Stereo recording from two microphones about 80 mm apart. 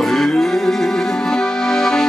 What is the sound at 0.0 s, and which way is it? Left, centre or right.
Music, centre.